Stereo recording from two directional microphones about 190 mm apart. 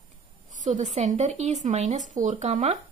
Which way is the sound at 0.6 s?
40° right (ahead or behind).